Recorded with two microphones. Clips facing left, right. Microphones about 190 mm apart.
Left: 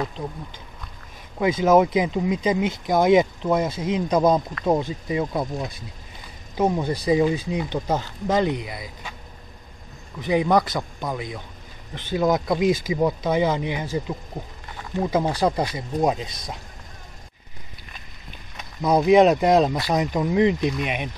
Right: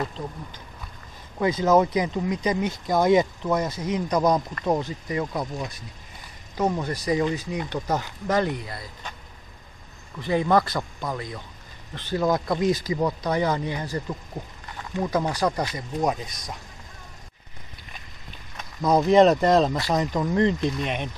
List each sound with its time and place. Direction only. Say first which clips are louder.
1.4 s speech: left 2 dB; 20° left (ahead or behind)
6.5 s speech: left 3 dB; 25° left (ahead or behind)
10.2 s speech: left 2 dB; 15° left (ahead or behind)
15.2 s speech: left 3 dB; 25° left (ahead or behind)
18.8 s speech: left 1 dB; 10° left (ahead or behind)